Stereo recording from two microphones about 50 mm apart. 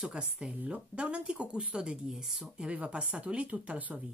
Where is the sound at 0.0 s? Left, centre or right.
Centre.